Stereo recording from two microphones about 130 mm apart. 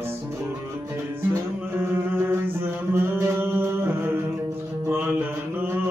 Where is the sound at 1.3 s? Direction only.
15° right (ahead or behind).